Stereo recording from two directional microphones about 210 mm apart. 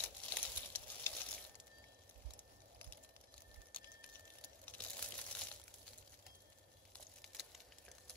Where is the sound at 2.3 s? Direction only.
10° left (ahead or behind).